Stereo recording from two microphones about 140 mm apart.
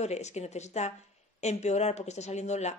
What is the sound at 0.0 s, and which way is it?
Speech, 55° left (ahead or behind).